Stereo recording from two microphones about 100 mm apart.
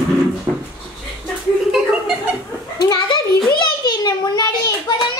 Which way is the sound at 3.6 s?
45° left (ahead or behind).